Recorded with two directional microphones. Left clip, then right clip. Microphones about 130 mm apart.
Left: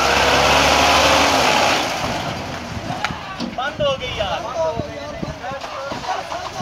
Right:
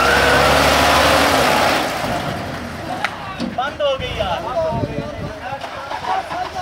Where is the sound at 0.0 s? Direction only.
35° right (ahead or behind).